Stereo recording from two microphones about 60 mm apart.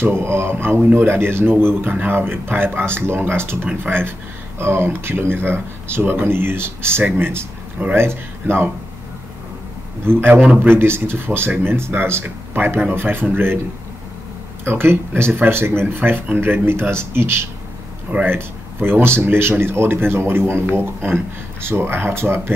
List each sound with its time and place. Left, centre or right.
0.0 s speech: right
10.0 s speech: right
14.6 s speech: right